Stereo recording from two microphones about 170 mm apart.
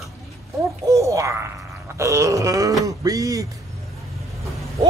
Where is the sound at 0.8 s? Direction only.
20° right (ahead or behind).